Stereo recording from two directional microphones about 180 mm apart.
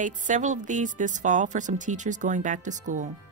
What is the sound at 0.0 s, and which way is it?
Speech, 45° right (ahead or behind).